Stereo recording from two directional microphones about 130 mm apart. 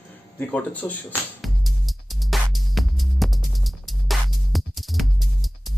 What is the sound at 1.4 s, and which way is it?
Music, centre (ahead or behind).